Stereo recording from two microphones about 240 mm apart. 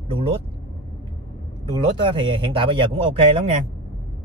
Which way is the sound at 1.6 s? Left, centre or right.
Centre.